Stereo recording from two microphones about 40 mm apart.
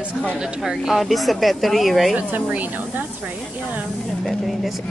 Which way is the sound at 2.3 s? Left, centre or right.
Right.